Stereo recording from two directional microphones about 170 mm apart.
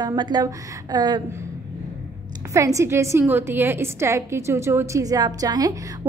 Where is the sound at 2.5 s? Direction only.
20° right (ahead or behind).